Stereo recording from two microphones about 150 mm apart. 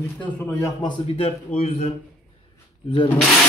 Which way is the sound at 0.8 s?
30° left (ahead or behind).